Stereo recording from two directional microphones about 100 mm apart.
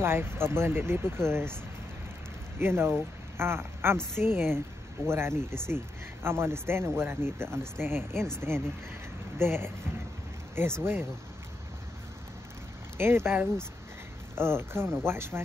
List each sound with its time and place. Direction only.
0.0 s speech: 25° right (ahead or behind)
2.6 s speech: 25° right (ahead or behind)
12.9 s speech: 25° right (ahead or behind)